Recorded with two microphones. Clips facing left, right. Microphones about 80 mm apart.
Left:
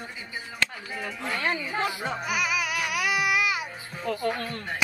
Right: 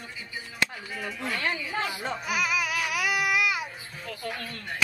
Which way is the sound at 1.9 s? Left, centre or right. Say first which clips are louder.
Left 1 dB; centre.